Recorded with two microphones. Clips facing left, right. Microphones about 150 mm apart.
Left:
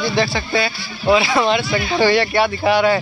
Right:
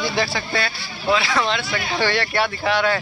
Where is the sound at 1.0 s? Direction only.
15° left (ahead or behind).